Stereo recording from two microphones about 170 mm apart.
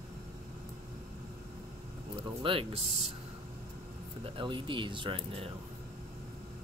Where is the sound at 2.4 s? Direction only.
30° right (ahead or behind).